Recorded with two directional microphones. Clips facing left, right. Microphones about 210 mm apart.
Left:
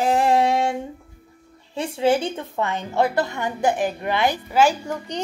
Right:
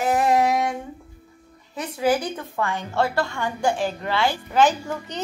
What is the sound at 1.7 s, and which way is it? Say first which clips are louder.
A woman's voice: left 2 dB; 25° left (ahead or behind).